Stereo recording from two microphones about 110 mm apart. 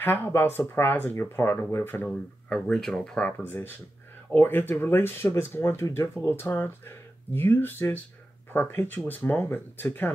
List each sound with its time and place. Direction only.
0.0 s speech: 20° left (ahead or behind)
2.0 s speech: centre (ahead or behind)
3.2 s speech: 15° left (ahead or behind)